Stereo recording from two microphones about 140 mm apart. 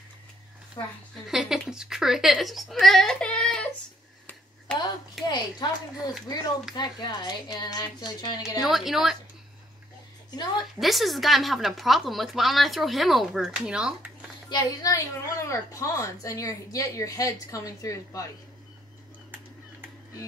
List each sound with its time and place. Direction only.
1.3 s speech: 5° right (ahead or behind)
5.2 s a woman's voice: 30° left (ahead or behind)
8.4 s speech: 5° right (ahead or behind)
10.8 s speech: centre (ahead or behind)
14.5 s a woman's voice: 25° left (ahead or behind)